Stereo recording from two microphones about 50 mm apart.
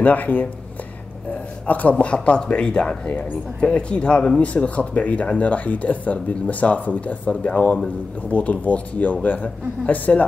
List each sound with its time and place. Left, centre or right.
0.0 s speech: left; by 3.0 s centre
3.1 s speech: left